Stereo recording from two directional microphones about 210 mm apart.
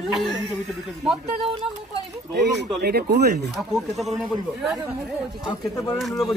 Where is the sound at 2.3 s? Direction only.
50° right (ahead or behind).